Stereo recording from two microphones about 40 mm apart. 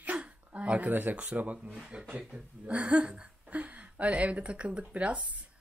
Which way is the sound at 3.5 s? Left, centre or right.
Right.